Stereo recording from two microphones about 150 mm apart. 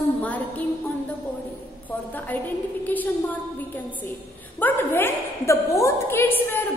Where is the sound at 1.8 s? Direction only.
10° left (ahead or behind).